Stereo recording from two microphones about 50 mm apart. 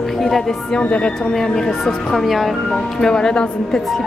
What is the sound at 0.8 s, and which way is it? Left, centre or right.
Speech, left.